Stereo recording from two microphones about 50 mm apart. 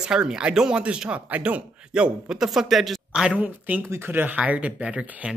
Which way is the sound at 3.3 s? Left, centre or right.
Right.